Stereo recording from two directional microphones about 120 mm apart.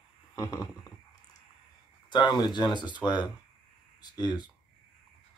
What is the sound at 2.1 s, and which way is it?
Speech, 40° left (ahead or behind).